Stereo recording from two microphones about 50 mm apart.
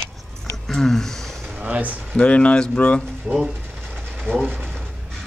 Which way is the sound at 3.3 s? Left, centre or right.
Centre.